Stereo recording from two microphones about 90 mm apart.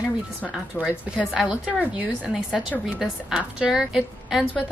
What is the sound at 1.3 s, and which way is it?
Speech, 10° right (ahead or behind).